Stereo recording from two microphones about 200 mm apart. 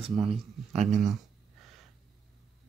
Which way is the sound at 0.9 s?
Centre (ahead or behind).